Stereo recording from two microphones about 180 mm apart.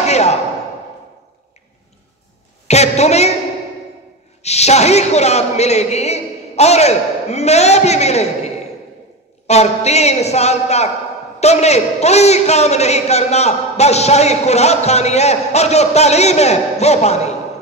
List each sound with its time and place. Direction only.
0.0 s a sound: 35° left (ahead or behind)
2.7 s a woman's voice: 35° left (ahead or behind)
4.4 s a man's voice: 35° left (ahead or behind)
9.5 s a man's voice: 35° left (ahead or behind)